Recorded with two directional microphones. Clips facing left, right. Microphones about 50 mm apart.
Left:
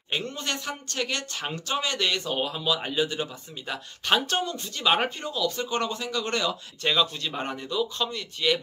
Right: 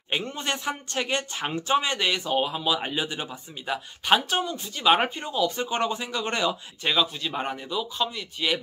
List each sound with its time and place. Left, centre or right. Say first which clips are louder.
0.1 s speech: right 2 dB; right
6.8 s speech: even; centre